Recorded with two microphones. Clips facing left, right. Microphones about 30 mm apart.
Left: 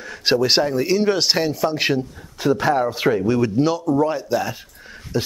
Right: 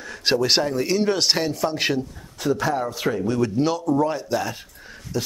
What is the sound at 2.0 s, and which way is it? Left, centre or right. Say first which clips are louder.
Speech: left 2 dB; centre.